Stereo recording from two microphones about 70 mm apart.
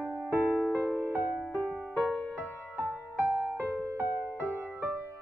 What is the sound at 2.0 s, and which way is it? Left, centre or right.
Music, left.